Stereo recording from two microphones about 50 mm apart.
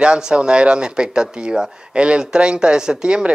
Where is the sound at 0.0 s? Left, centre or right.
Centre.